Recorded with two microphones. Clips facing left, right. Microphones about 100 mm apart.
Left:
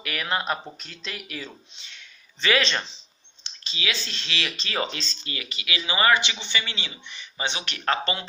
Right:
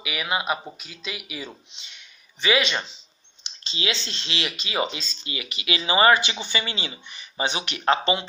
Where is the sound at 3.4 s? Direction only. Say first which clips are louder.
Right 2 dB; 25° right (ahead or behind).